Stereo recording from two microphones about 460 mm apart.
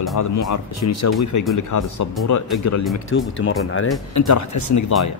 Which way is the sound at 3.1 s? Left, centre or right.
Left.